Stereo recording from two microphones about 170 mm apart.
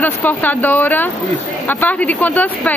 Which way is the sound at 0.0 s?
10° left (ahead or behind).